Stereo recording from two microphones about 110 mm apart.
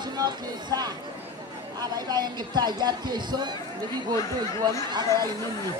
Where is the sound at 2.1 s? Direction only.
40° right (ahead or behind).